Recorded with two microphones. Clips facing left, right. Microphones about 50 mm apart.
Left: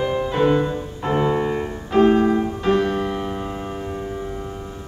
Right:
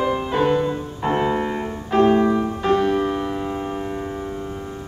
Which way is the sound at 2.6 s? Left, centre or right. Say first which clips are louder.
Right 1 dB; centre.